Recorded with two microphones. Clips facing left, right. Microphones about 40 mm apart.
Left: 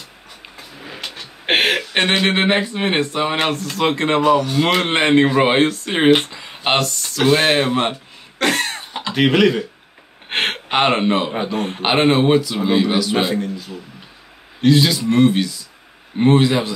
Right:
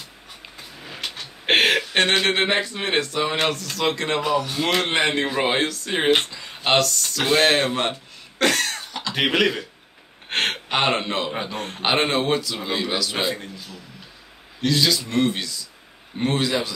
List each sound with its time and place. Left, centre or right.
0.6 s vehicle: centre
1.1 s a sound: centre
2.0 s speech: centre
4.2 s a man's voice: centre
4.7 s speech: left
7.2 s a man's voice: centre
8.5 s cough: left
9.1 s a man's voice: centre
10.3 s a man's voice: left
14.6 s speech: centre